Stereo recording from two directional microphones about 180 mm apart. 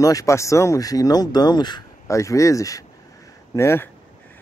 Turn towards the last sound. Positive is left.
turn(degrees=15)  # may be behind; listen again after turning